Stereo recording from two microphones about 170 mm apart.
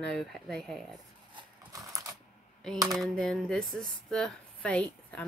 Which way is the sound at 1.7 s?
20° right (ahead or behind).